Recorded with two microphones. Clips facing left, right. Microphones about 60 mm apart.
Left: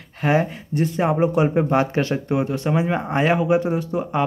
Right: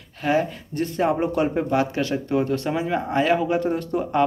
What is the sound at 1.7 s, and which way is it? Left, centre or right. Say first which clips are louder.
Speech: left 3 dB; left.